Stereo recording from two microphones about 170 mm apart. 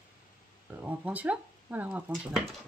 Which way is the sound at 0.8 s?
10° right (ahead or behind).